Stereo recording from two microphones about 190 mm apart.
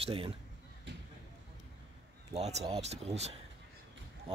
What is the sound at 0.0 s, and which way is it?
Speech, 30° right (ahead or behind).